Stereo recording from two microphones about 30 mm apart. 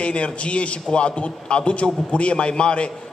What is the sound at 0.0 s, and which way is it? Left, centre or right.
A man's voice, left.